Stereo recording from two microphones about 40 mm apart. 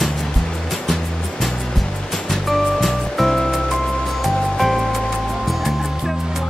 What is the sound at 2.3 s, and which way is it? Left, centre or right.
Music, centre.